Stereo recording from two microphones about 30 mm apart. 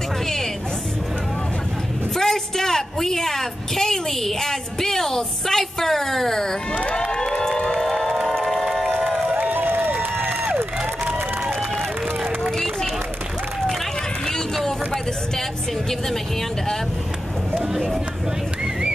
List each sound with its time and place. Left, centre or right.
2.1 s a woman's voice: centre
6.7 s crowd: left
7.0 s cheering: left
7.3 s crowd: left
7.7 s music: centre
9.3 s crowd: right
17.6 s a sound: centre